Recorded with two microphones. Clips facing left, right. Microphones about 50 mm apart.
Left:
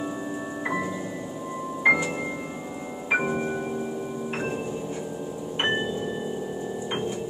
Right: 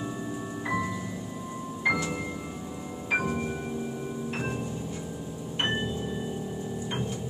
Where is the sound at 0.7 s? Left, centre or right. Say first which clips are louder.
Left 1 dB; left.